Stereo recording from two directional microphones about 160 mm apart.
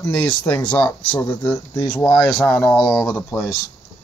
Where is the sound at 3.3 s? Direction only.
20° left (ahead or behind).